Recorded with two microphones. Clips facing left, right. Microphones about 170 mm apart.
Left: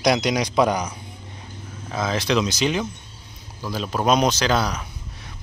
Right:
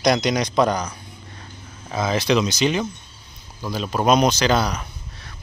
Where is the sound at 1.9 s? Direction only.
Centre (ahead or behind).